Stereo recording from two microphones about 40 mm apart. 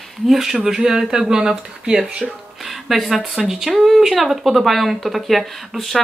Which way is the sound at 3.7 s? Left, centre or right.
Centre.